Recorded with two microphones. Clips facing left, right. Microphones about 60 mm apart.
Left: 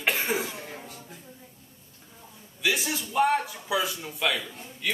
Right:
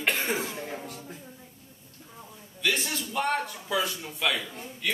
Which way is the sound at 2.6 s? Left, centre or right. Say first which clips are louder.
Left 1 dB; centre.